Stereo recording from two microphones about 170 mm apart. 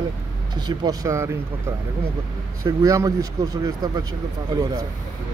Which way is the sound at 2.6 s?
20° right (ahead or behind).